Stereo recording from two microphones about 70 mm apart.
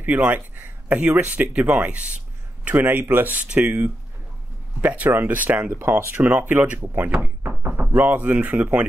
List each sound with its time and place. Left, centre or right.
0.0 s speech: right
5.7 s speech: right
6.2 s speech: right